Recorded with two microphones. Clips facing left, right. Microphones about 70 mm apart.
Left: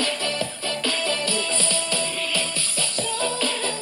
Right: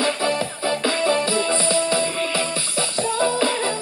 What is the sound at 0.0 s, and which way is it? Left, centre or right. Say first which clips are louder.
Music: right 5 dB; right.